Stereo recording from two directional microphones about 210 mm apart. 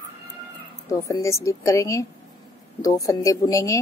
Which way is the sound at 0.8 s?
15° left (ahead or behind).